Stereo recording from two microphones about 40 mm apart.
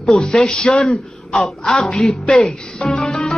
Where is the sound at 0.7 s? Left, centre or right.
Left.